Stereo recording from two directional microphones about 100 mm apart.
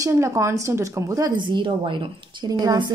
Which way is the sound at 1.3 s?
55° right (ahead or behind).